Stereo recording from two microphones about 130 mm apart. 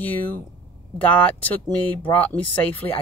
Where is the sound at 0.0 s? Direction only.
15° left (ahead or behind).